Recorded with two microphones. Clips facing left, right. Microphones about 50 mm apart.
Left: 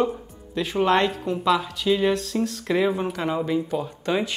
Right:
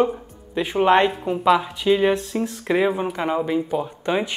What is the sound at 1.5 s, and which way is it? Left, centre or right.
Speech, right.